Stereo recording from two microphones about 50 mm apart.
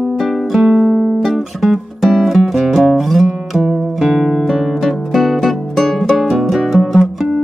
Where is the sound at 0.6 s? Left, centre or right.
Right.